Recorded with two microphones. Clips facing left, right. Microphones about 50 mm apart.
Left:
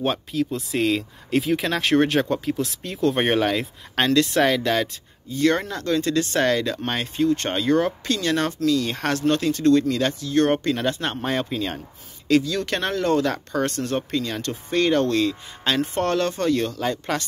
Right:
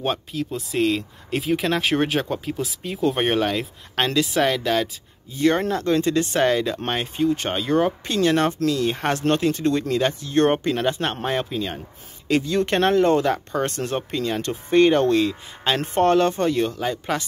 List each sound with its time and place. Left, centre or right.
0.0 s speech: centre
3.2 s speech: centre
5.3 s speech: centre
10.5 s speech: centre
11.2 s speech: centre
12.3 s speech: right
13.3 s speech: centre
13.7 s speech: right
13.9 s speech: centre